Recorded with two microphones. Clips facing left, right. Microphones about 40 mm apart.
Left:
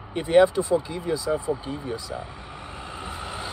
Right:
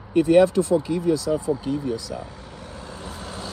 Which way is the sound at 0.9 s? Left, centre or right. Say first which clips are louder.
Right 4 dB; left.